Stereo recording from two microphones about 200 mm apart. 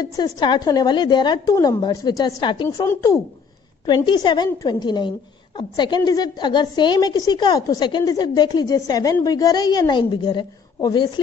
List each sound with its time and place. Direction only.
0.0 s a woman's voice: 20° left (ahead or behind)